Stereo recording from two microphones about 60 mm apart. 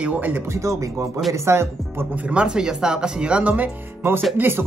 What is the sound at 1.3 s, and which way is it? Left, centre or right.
Speech, right.